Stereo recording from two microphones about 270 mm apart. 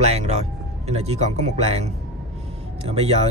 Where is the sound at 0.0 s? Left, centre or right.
Right.